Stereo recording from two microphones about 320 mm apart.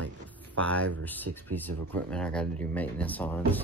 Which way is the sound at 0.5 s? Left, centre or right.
Centre.